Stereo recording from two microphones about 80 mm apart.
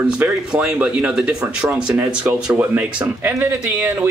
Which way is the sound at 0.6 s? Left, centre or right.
Centre.